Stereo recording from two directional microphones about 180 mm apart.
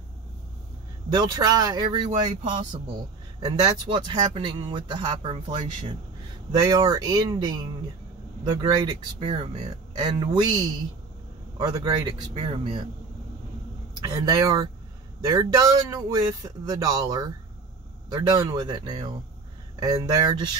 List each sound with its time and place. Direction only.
1.1 s speech: 20° right (ahead or behind)
2.4 s speech: 45° right (ahead or behind)
3.3 s speech: 25° right (ahead or behind)
14.0 s speech: 20° right (ahead or behind)